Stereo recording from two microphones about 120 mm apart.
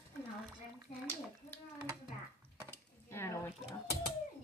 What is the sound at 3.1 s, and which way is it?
Speech, 20° left (ahead or behind).